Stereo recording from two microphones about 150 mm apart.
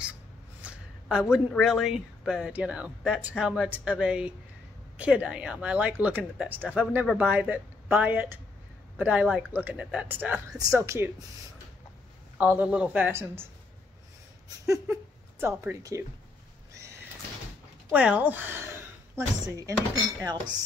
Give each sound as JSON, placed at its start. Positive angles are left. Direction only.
{"t": 0.6, "sound": "a sound", "side_deg": -5}
{"t": 1.5, "sound": "a woman's voice", "side_deg": -5}
{"t": 12.4, "sound": "speech", "side_deg": -10}
{"t": 14.7, "sound": "speech", "side_deg": -15}
{"t": 16.7, "sound": "neigh", "side_deg": -20}
{"t": 17.8, "sound": "a woman's voice", "side_deg": -10}